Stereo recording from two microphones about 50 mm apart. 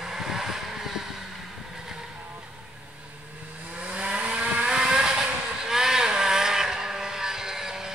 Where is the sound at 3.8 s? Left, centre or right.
Centre.